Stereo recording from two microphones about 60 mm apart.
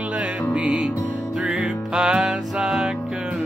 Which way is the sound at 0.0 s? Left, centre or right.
Centre.